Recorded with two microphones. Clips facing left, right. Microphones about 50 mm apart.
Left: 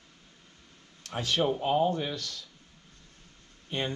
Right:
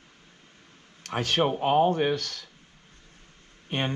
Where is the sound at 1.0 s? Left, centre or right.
Right.